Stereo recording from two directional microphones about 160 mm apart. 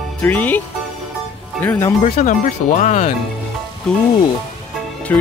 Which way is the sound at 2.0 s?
50° left (ahead or behind).